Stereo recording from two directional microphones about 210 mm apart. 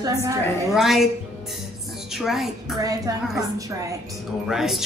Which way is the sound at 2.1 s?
Centre (ahead or behind).